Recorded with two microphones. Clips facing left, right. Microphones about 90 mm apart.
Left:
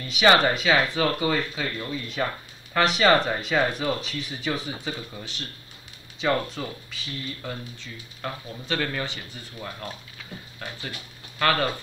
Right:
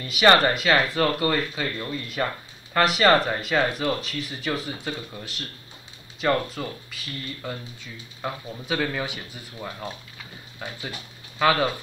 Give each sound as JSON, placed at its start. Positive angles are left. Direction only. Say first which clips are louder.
{"t": 0.0, "sound": "speech", "louder": "right 1 dB", "side_deg": 0}
{"t": 11.3, "sound": "speech", "louder": "right 2 dB", "side_deg": -5}